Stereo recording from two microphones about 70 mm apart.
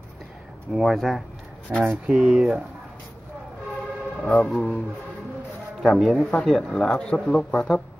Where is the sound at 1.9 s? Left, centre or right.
Centre.